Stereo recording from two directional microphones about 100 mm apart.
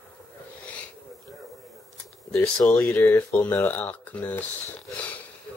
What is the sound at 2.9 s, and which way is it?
Speech, 25° left (ahead or behind).